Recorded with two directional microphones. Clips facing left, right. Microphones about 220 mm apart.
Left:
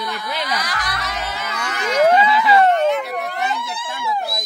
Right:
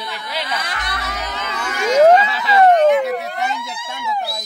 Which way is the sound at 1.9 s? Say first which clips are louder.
Right 3 dB; 40° right (ahead or behind).